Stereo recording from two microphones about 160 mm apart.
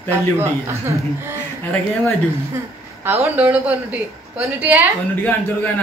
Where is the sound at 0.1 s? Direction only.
15° right (ahead or behind).